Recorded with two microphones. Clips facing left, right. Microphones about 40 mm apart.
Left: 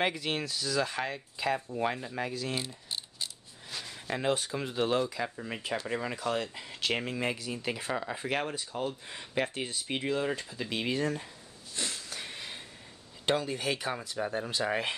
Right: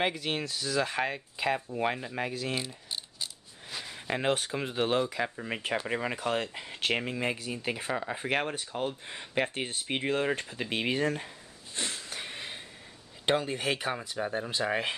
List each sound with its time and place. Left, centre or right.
0.0 s speech: centre
2.5 s mechanisms: centre
3.7 s a sound: centre
4.2 s speech: right
5.6 s speech: right
6.9 s speech: centre
8.2 s speech: right
9.1 s speech: centre
9.5 s speech: right
11.7 s sniff: right
13.2 s speech: right
14.1 s speech: centre